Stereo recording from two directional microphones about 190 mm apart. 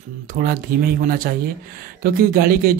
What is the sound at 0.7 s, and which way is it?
Speech, 50° right (ahead or behind).